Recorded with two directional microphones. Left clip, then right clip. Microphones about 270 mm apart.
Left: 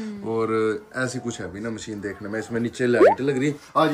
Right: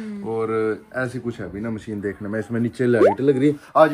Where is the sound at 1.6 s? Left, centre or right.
Right.